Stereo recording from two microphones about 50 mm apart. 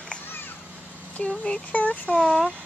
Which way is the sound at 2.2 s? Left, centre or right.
Centre.